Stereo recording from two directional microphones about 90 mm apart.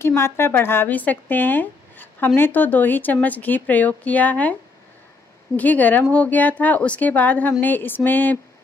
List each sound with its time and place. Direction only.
0.0 s speech: 30° left (ahead or behind)
5.6 s speech: 20° left (ahead or behind)